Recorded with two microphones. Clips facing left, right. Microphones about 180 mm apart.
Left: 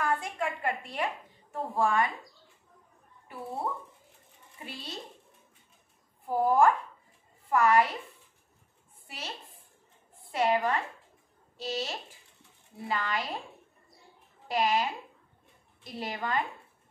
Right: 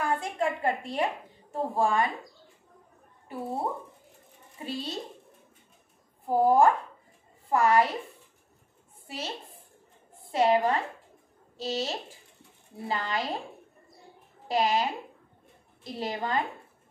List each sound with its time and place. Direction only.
0.0 s a woman's voice: 30° right (ahead or behind)
3.3 s a woman's voice: 35° right (ahead or behind)
6.2 s a woman's voice: 30° right (ahead or behind)
9.0 s a woman's voice: 30° right (ahead or behind)
10.3 s a woman's voice: 30° right (ahead or behind)
14.5 s a woman's voice: 30° right (ahead or behind)